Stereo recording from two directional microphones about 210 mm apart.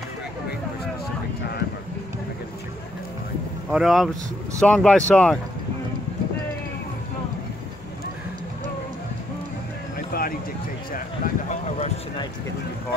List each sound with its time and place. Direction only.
3.7 s speech: centre (ahead or behind)
9.9 s music: 45° left (ahead or behind)
10.9 s a sound: 40° left (ahead or behind)